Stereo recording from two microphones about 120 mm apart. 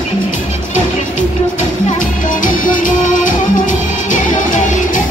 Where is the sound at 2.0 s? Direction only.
90° left.